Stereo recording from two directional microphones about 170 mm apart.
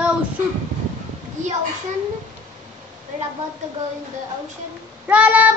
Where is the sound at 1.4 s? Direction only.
45° right (ahead or behind).